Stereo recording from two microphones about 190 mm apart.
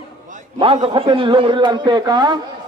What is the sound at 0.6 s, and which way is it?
A man's voice, 25° right (ahead or behind).